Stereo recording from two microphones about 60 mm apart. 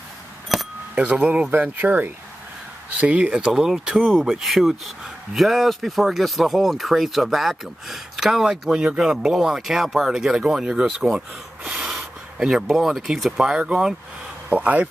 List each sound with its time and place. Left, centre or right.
0.5 s keys jangling: centre
0.9 s speech: right; by 13.6 s centre
14.5 s speech: right